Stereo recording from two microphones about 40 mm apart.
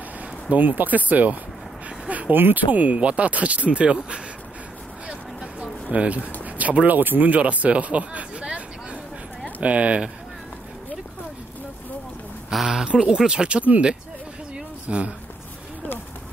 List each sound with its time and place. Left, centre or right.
0.5 s speech: right
5.0 s a sound: right
7.0 s speech: right
9.6 s speech: right
12.5 s speech: centre
12.8 s speech: right
14.5 s a sound: right